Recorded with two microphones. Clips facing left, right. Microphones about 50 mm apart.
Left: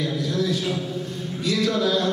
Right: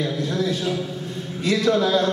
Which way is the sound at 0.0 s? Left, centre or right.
Right.